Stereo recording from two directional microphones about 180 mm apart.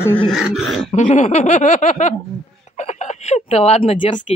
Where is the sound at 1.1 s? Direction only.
40° left (ahead or behind).